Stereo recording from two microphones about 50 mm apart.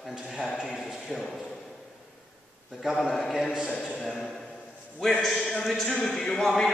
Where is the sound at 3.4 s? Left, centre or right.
Centre.